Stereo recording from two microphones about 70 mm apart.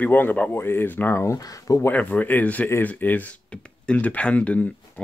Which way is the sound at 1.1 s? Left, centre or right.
Left.